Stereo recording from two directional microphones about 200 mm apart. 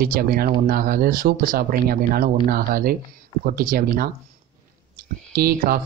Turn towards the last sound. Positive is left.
turn(degrees=-50)  # may be behind; listen again after turning